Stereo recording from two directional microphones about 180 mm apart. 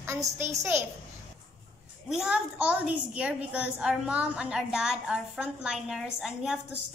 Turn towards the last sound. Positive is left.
turn(degrees=0)  # may be behind; listen again after turning